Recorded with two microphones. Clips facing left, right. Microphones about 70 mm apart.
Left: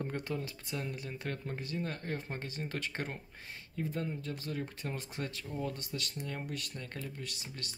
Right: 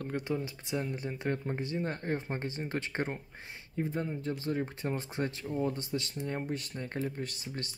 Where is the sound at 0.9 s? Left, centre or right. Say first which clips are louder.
Right 6 dB; right.